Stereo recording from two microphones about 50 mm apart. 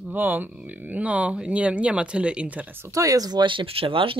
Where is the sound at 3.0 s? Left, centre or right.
Right.